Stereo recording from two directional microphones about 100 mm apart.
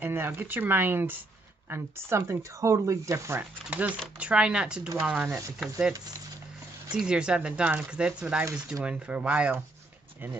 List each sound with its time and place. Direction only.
0.0 s speech: 20° right (ahead or behind)
3.6 s speech: 15° right (ahead or behind)
6.9 s speech: 10° right (ahead or behind)